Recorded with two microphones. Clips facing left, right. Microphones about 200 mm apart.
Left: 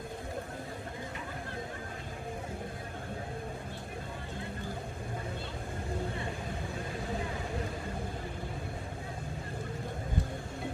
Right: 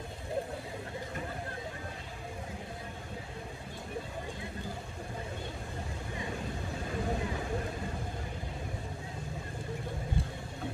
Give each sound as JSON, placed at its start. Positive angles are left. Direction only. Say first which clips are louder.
{"t": 10.2, "sound": "vehicle", "louder": "left 4 dB", "side_deg": -30}